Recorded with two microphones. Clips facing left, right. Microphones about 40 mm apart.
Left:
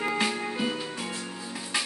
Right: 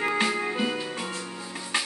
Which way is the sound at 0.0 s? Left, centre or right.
Right.